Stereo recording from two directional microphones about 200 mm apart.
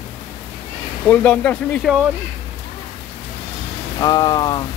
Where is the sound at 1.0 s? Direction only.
5° left (ahead or behind).